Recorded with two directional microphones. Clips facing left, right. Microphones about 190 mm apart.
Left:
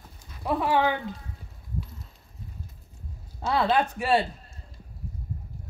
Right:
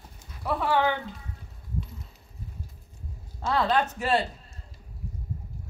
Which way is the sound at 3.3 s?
10° left (ahead or behind).